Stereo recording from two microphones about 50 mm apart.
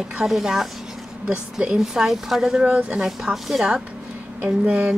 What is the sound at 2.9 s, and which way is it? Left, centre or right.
Speech, centre.